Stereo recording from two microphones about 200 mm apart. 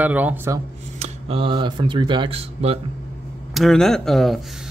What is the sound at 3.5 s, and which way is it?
Speech, centre (ahead or behind).